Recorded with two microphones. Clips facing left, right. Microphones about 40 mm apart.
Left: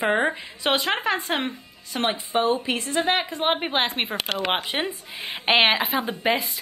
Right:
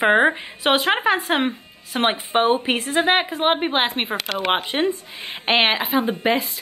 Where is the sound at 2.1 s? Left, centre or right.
Right.